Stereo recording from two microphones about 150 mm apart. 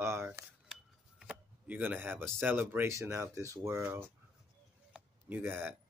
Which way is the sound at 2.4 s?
15° right (ahead or behind).